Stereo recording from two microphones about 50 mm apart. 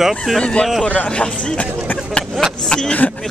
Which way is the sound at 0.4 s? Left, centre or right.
Centre.